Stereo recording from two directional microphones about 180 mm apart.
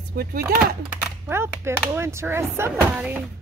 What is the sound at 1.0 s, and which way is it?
Speech, 15° right (ahead or behind).